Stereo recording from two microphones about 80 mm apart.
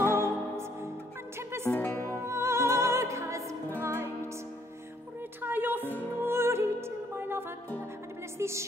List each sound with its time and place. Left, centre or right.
0.1 s music: right
1.7 s music: left
2.2 s music: right
5.4 s music: right
5.9 s music: left
6.2 s music: right